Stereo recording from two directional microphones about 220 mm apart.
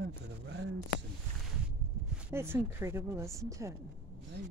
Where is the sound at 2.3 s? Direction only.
10° right (ahead or behind).